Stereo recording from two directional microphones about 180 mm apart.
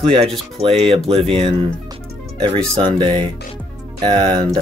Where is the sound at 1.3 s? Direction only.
30° right (ahead or behind).